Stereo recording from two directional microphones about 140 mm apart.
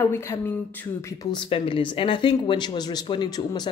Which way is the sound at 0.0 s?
20° left (ahead or behind).